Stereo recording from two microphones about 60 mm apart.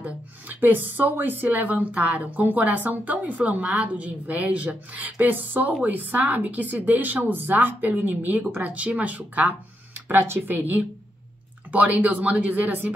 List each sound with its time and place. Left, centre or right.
0.0 s a woman's voice: right
11.7 s a woman's voice: right